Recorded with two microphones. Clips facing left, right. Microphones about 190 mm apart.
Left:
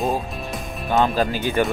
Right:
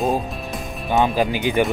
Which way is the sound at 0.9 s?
10° right (ahead or behind).